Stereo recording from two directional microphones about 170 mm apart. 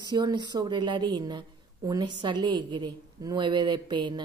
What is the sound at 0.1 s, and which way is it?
A woman's voice, 25° right (ahead or behind).